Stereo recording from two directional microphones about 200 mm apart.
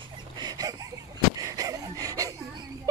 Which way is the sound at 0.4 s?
20° right (ahead or behind).